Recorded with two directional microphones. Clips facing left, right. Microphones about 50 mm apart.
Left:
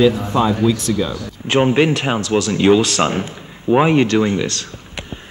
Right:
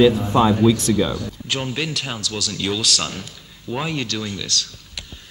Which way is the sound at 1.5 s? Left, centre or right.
Left.